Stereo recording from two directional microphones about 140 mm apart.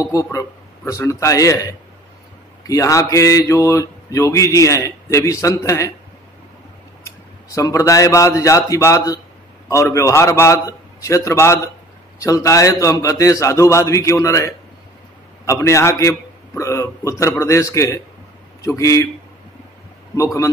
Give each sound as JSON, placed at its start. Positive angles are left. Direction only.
{"t": 0.0, "sound": "speech", "side_deg": 25}
{"t": 7.5, "sound": "speech", "side_deg": 20}